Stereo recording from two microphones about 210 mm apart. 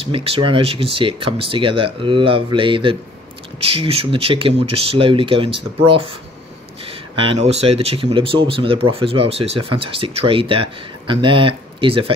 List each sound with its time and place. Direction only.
0.0 s speech: 25° right (ahead or behind)